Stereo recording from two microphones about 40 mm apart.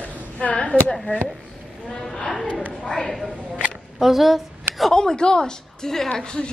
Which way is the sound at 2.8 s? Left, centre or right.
Centre.